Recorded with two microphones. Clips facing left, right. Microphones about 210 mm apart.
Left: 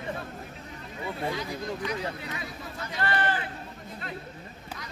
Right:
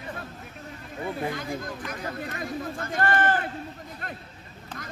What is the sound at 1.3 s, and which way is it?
Speech, 50° right (ahead or behind).